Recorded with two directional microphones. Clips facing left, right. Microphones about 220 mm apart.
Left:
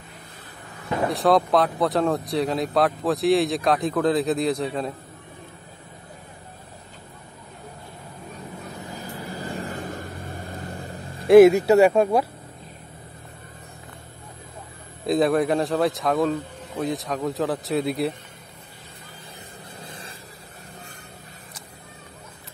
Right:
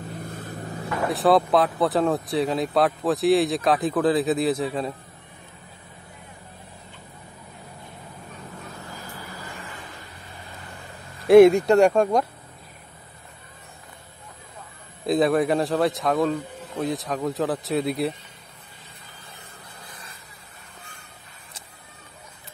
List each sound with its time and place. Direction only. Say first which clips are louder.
0.2 s vehicle: right 10 dB; 50° right (ahead or behind)
1.1 s speech: right 1 dB; centre (ahead or behind)
8.6 s vehicle: left 4 dB; 15° left (ahead or behind); by 11.2 s 35° left (ahead or behind)
11.2 s speech: left 1 dB; centre (ahead or behind)
15.0 s speech: even; centre (ahead or behind)
19.8 s vehicle: left 6 dB; 30° left (ahead or behind)